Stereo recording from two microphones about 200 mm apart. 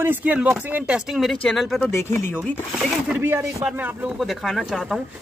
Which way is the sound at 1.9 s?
15° left (ahead or behind).